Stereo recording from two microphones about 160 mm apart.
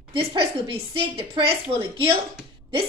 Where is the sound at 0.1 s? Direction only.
35° right (ahead or behind).